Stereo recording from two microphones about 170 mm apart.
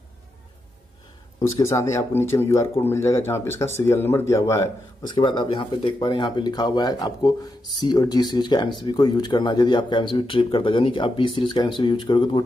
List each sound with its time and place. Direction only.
1.6 s speech: 15° left (ahead or behind)